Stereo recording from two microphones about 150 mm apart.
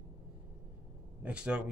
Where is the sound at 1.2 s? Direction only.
5° right (ahead or behind).